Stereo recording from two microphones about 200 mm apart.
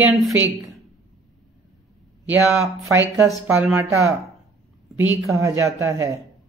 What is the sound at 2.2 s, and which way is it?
Speech, 5° right (ahead or behind).